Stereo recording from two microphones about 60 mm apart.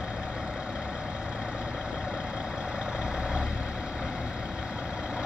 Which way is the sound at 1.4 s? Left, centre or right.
Right.